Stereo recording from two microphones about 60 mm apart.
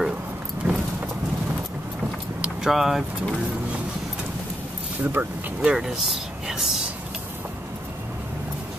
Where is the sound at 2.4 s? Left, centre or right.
Centre.